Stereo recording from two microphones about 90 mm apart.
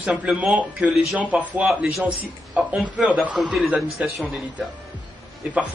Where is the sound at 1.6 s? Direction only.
5° right (ahead or behind).